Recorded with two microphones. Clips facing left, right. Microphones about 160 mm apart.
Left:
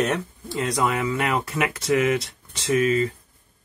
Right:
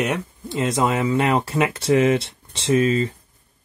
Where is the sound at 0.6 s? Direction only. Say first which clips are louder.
Right 3 dB; 25° right (ahead or behind).